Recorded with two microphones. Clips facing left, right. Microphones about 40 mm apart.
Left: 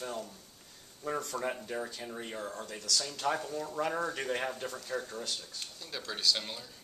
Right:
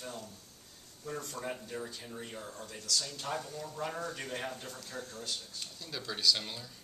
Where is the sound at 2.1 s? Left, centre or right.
Left.